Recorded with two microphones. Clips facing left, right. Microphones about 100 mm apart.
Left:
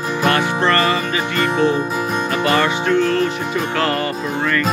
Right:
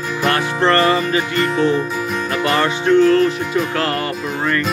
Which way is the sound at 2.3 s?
15° left (ahead or behind).